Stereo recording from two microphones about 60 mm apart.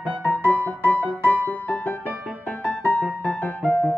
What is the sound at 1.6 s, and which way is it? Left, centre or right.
Music, left.